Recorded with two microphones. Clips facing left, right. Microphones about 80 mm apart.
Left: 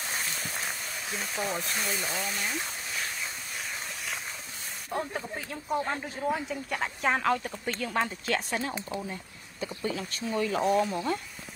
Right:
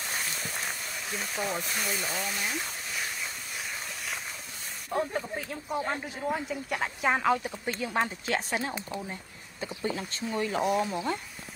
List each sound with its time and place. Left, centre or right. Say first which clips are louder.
0.0 s a sound: even; centre
2.2 s speech: even; centre
4.9 s speech: right 3 dB; centre
9.8 s speech: even; right
10.6 s speech: left 2 dB; centre